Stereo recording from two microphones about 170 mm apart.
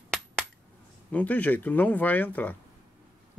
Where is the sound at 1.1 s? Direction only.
10° left (ahead or behind).